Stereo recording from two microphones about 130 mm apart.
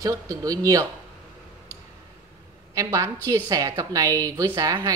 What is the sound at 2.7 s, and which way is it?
Speech, 25° right (ahead or behind).